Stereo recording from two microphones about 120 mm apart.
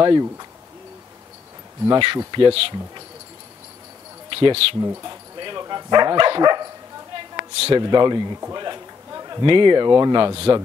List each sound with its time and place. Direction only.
0.0 s speech: 35° right (ahead or behind)
1.9 s speech: 45° right (ahead or behind)
4.3 s speech: 45° right (ahead or behind)
4.7 s speech: 25° right (ahead or behind)
7.5 s speech: 55° right (ahead or behind)
7.8 s a man's voice: 35° right (ahead or behind)